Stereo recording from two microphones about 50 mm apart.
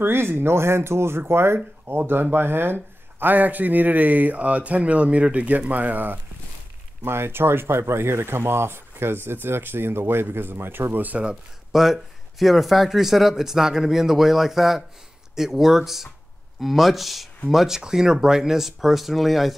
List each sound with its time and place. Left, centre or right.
0.0 s speech: right
7.1 s speech: right
11.7 s speech: centre